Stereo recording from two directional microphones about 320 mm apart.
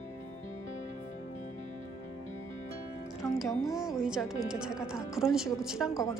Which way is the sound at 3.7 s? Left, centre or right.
Centre.